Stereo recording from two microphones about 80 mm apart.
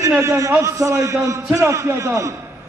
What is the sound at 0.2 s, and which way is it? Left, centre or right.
A man's voice, right.